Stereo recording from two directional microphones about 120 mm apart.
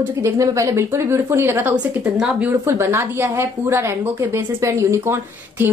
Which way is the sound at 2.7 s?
20° right (ahead or behind).